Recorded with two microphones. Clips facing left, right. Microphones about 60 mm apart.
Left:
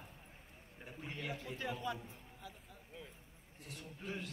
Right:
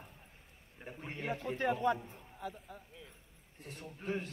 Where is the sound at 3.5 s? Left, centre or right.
Right.